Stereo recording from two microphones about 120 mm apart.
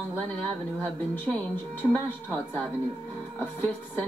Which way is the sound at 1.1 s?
15° left (ahead or behind).